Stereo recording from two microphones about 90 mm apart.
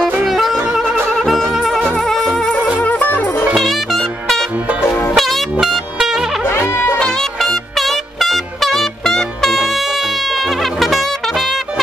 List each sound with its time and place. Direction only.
0.2 s music: centre (ahead or behind)
2.8 s music: 20° left (ahead or behind)
3.5 s music: centre (ahead or behind)